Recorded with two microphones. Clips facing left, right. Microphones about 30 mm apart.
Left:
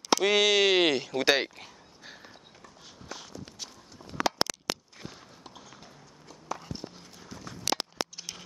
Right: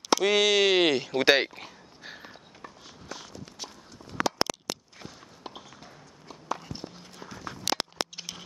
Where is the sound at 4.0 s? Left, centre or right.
Centre.